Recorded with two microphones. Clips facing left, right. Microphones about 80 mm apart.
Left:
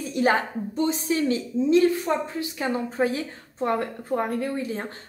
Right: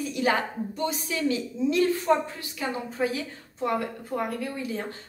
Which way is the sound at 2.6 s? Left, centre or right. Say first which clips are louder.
Left 3 dB; left.